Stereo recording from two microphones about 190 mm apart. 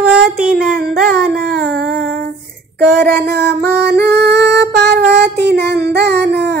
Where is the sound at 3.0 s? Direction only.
55° right (ahead or behind).